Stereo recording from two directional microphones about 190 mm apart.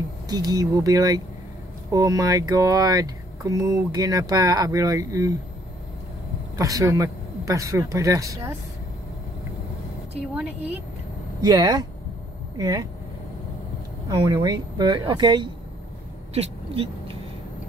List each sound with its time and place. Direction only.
0.3 s speech: 20° right (ahead or behind)
6.6 s speech: 15° right (ahead or behind)
10.3 s speech: 5° right (ahead or behind)
11.4 s speech: 20° right (ahead or behind)
14.0 s speech: 20° right (ahead or behind)
16.3 s vehicle: 30° right (ahead or behind)